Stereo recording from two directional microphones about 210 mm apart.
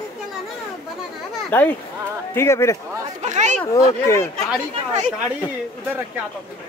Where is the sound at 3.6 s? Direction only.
15° left (ahead or behind).